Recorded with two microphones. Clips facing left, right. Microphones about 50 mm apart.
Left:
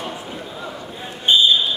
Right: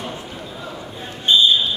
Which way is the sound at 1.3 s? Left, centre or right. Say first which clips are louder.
Even; centre.